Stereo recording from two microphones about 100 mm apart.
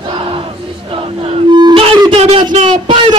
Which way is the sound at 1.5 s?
50° right (ahead or behind).